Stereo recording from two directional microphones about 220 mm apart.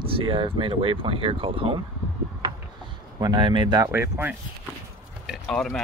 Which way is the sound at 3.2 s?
20° right (ahead or behind).